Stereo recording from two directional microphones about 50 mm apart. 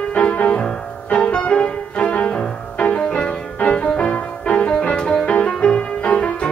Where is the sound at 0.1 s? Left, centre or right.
Left.